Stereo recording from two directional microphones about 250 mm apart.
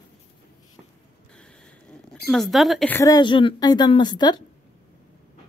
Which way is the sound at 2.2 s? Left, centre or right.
Centre.